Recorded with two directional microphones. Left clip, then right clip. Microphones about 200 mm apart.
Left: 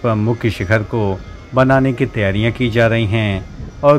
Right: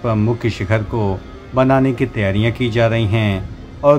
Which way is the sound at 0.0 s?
15° left (ahead or behind).